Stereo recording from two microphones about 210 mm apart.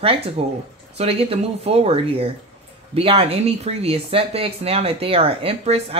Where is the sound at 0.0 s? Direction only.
25° right (ahead or behind).